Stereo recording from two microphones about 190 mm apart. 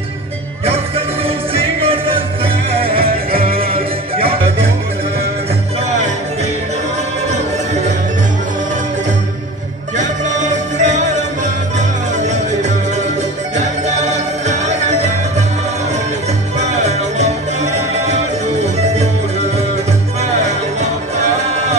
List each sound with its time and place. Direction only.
0.7 s music: 30° right (ahead or behind)
3.3 s music: 50° right (ahead or behind)
3.7 s music: 30° right (ahead or behind)
5.9 s music: 40° right (ahead or behind)
9.9 s music: 40° right (ahead or behind)
16.5 s music: 35° right (ahead or behind)
20.2 s music: 35° right (ahead or behind)